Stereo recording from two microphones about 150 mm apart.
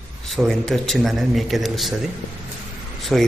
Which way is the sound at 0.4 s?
Centre (ahead or behind).